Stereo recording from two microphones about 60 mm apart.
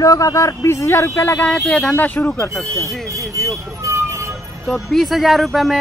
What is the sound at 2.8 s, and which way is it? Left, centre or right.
Speech, right.